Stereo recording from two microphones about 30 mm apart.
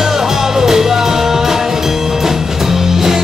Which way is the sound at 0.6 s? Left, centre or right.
Centre.